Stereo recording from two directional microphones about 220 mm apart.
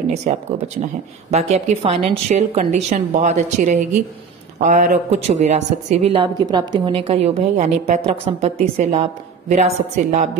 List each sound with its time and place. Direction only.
0.1 s a woman's voice: 30° right (ahead or behind)